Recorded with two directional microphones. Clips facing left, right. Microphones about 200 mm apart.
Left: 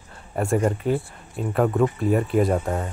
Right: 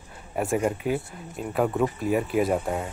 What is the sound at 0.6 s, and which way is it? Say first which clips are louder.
Speech: left 4 dB; 5° right (ahead or behind).